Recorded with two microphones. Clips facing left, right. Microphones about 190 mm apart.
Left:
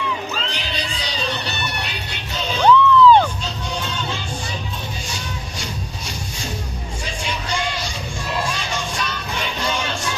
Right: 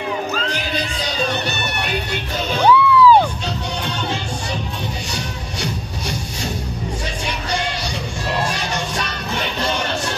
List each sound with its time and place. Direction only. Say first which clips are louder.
0.3 s crowd: right 4 dB; 50° right (ahead or behind)
2.6 s music: even; 10° right (ahead or behind)